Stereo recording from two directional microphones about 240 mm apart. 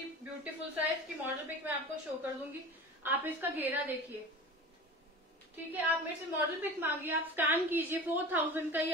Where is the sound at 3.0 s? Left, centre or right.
Centre.